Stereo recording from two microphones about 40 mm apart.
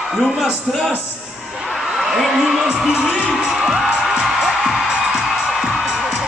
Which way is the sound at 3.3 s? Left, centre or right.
Centre.